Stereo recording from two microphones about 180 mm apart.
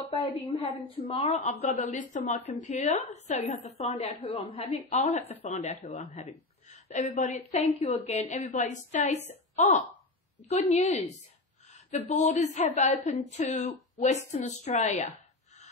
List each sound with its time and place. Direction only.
0.1 s a woman's voice: 25° left (ahead or behind)